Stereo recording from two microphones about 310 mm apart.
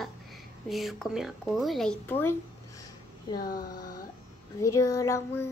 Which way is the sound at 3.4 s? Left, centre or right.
Left.